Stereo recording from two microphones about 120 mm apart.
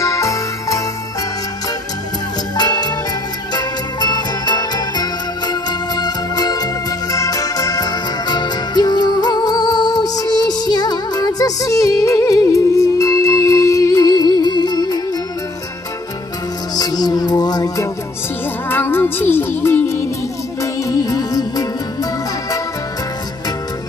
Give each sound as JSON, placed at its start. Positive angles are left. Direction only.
{"t": 0.0, "sound": "music", "side_deg": 25}
{"t": 2.5, "sound": "music", "side_deg": 35}
{"t": 16.7, "sound": "music", "side_deg": 35}
{"t": 18.7, "sound": "music", "side_deg": 20}